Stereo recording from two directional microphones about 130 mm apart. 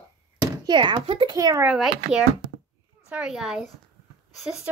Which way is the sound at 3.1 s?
5° right (ahead or behind).